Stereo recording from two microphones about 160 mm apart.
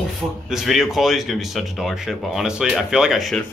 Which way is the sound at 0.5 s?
Centre (ahead or behind).